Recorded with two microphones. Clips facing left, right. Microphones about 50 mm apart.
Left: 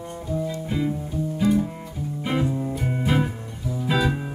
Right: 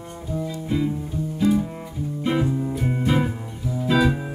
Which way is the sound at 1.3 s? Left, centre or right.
Centre.